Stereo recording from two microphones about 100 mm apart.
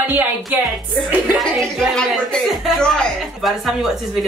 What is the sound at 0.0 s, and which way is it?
Speech, 20° right (ahead or behind).